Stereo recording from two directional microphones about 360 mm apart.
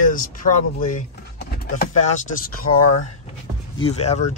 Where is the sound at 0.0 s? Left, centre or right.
Left.